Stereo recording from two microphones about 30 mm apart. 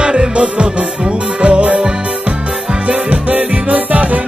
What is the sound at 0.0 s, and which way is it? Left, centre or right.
Music, right.